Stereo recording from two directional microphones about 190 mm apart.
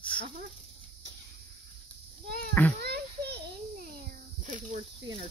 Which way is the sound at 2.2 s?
55° right (ahead or behind).